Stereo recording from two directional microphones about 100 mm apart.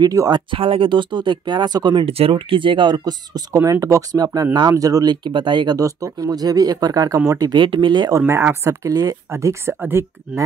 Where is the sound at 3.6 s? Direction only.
30° right (ahead or behind); by 5.7 s 50° right (ahead or behind).